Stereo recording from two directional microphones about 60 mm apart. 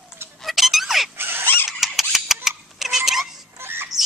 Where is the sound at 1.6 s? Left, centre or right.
Centre.